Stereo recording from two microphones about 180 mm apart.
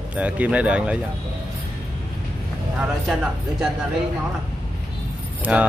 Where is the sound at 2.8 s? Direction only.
5° right (ahead or behind).